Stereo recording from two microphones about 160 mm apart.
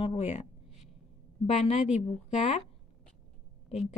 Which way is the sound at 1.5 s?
45° left (ahead or behind).